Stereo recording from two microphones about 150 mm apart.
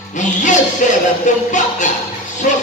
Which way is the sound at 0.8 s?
55° left (ahead or behind).